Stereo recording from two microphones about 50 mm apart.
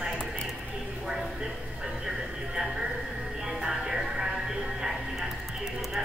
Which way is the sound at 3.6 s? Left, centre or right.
Centre.